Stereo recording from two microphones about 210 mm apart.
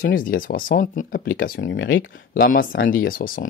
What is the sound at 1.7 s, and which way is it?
Speech, 60° left (ahead or behind).